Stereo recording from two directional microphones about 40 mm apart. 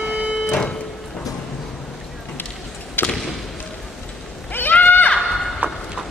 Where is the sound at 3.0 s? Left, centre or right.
Left.